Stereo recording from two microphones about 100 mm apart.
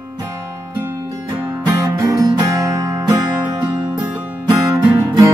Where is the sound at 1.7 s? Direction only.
30° right (ahead or behind).